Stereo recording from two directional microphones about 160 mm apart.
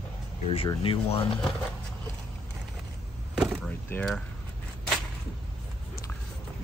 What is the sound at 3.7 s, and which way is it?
Speech, 10° left (ahead or behind).